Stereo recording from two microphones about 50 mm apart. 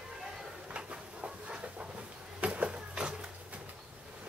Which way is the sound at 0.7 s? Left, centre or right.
Right.